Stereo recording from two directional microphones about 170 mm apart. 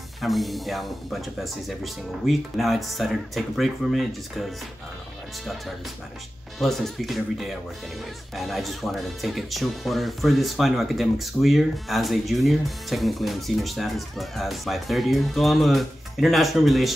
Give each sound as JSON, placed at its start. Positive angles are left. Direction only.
{"t": 0.2, "sound": "speech", "side_deg": 0}
{"t": 6.6, "sound": "speech", "side_deg": 0}